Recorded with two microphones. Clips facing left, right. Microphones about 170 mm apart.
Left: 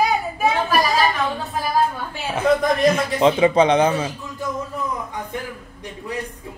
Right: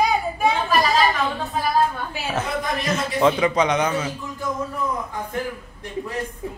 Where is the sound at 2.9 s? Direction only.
20° left (ahead or behind).